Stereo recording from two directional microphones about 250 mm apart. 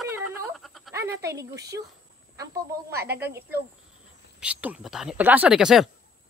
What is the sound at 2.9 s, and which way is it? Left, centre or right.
Speech, right.